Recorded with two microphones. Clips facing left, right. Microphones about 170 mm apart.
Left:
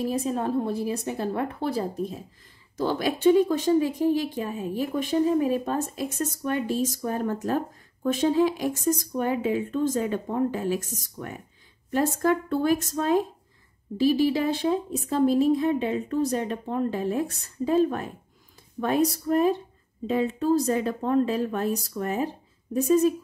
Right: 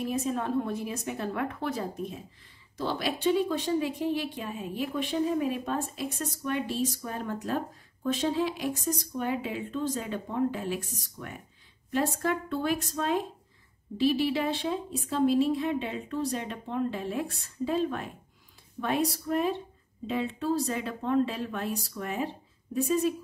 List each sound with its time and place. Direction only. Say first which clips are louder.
0.0 s a woman's voice: left 4 dB; 35° left (ahead or behind)
2.8 s speech: left 6 dB; 45° left (ahead or behind)